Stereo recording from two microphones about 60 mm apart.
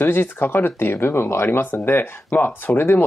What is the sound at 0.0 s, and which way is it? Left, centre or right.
Speech, left.